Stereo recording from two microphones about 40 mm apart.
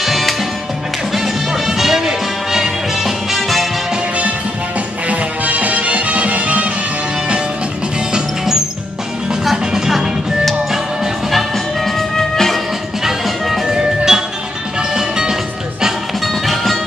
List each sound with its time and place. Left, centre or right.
0.0 s music: centre
5.0 s music: right
8.1 s music: centre
9.7 s music: centre
11.5 s music: centre
13.0 s music: centre
13.7 s music: centre